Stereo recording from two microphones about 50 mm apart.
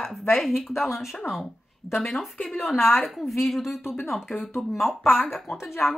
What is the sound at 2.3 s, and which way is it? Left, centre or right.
Speech, left.